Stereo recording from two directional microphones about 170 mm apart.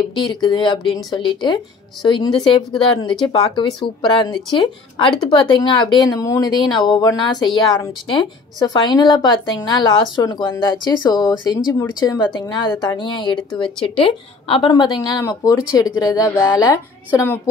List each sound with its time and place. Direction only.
0.3 s speech: 25° left (ahead or behind)